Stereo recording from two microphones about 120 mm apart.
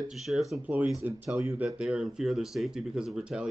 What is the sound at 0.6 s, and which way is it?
Speech, 10° right (ahead or behind).